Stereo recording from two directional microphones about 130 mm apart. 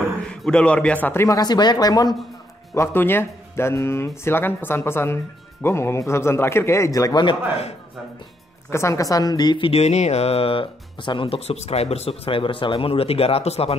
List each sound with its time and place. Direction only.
0.3 s speech: 5° left (ahead or behind); by 2.1 s 30° left (ahead or behind)
2.7 s speech: 20° left (ahead or behind)
8.6 s speech: 20° left (ahead or behind)
9.7 s speech: 55° left (ahead or behind)